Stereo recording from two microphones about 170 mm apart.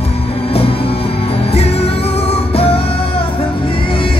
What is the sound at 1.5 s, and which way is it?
Music, 35° left (ahead or behind).